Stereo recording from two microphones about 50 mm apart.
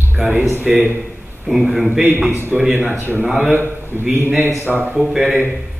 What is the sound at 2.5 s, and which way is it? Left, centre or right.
Speech, right.